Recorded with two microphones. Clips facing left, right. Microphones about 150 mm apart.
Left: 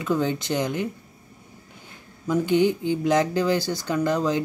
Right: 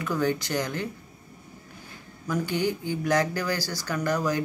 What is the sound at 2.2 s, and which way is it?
Speech, 20° left (ahead or behind).